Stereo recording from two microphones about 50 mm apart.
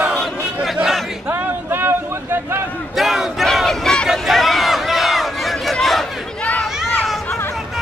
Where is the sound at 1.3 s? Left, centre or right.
Right.